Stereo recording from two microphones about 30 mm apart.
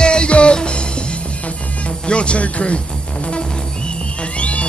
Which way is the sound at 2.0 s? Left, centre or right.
Left.